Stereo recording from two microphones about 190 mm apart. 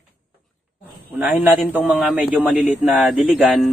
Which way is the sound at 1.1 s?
10° right (ahead or behind).